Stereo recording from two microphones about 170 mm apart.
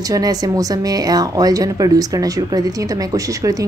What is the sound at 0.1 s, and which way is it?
Speech, 20° right (ahead or behind).